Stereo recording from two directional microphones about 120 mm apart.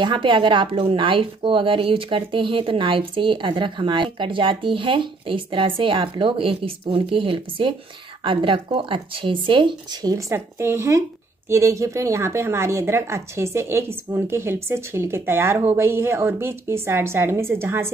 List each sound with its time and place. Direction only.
0.0 s a woman's voice: 40° right (ahead or behind); by 17.9 s 20° right (ahead or behind)